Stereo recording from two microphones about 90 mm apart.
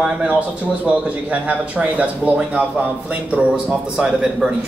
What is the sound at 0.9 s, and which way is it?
Speech, 15° right (ahead or behind).